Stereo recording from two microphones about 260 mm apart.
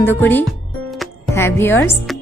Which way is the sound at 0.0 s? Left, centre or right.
Centre.